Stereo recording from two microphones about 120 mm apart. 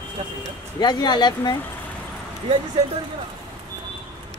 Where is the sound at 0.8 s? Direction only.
35° left (ahead or behind).